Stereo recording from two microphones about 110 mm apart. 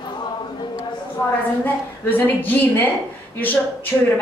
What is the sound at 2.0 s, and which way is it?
Speech, 15° left (ahead or behind).